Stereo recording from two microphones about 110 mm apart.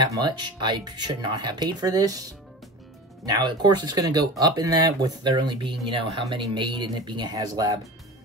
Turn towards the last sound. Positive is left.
turn(degrees=-35)  # may be behind; listen again after turning